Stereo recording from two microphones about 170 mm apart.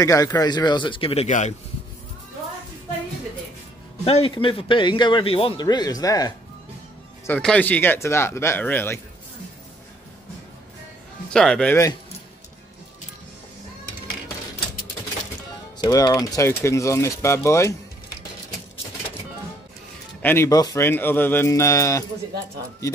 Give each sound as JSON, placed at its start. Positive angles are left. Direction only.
{"t": 0.0, "sound": "a man's voice", "side_deg": 20}
{"t": 4.0, "sound": "a man's voice", "side_deg": 35}
{"t": 7.2, "sound": "speech", "side_deg": 10}
{"t": 11.3, "sound": "speech", "side_deg": 5}
{"t": 15.8, "sound": "speech", "side_deg": 20}
{"t": 20.2, "sound": "speech", "side_deg": 15}